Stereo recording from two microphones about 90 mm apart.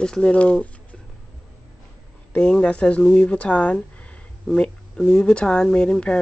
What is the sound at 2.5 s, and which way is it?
Speech, 10° left (ahead or behind).